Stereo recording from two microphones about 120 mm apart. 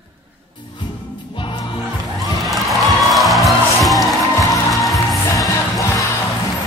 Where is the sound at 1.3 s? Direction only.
40° left (ahead or behind).